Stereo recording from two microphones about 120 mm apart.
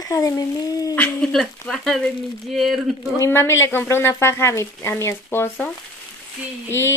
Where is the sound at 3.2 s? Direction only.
20° left (ahead or behind).